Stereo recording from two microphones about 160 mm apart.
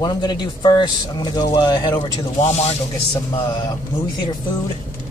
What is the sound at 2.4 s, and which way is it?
Speech, 40° left (ahead or behind).